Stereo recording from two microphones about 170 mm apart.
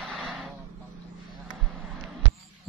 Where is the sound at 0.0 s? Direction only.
Centre (ahead or behind).